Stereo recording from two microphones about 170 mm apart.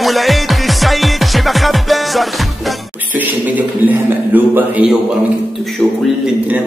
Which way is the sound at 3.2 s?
10° right (ahead or behind).